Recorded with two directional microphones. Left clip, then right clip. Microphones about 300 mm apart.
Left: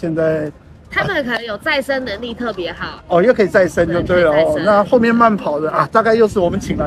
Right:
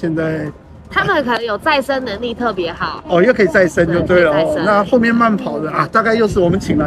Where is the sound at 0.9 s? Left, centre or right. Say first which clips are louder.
Right 3 dB; centre.